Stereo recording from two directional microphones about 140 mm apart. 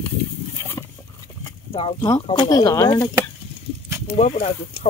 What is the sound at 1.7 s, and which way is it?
Speech, 45° left (ahead or behind).